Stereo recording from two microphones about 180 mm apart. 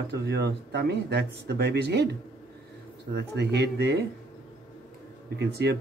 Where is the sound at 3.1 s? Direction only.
70° right (ahead or behind).